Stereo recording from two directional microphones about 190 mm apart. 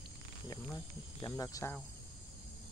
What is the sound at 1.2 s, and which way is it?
Speech, 15° left (ahead or behind).